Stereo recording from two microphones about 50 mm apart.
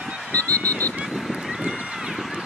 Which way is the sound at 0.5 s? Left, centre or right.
Left.